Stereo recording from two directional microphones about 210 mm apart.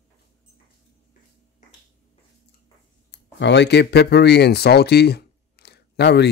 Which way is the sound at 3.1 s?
55° left (ahead or behind).